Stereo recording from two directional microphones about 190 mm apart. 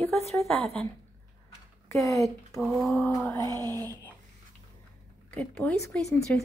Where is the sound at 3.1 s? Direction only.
15° left (ahead or behind).